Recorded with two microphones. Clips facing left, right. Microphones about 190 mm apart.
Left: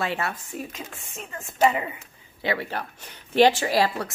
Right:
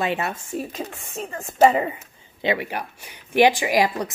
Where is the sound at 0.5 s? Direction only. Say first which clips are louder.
Right 6 dB; 35° right (ahead or behind).